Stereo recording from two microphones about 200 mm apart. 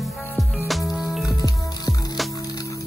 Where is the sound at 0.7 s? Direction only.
Centre (ahead or behind).